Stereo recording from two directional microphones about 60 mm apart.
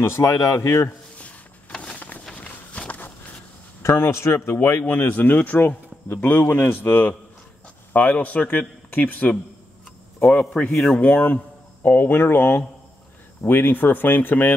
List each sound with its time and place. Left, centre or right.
0.0 s a man's voice: left
1.1 s a sound: left
2.3 s walk: left
3.8 s speech: left
10.7 s speech: centre
11.0 s speech: left